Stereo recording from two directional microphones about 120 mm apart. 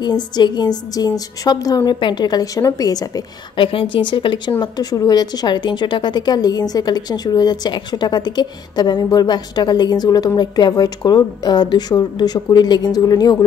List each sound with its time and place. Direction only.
0.0 s speech: 35° left (ahead or behind)
3.5 s speech: 45° left (ahead or behind)